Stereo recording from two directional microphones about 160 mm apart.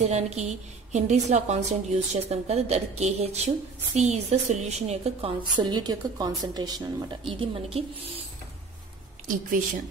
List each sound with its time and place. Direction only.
0.0 s a woman's voice: 45° right (ahead or behind)